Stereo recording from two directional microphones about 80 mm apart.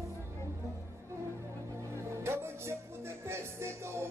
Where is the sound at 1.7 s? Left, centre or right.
Right.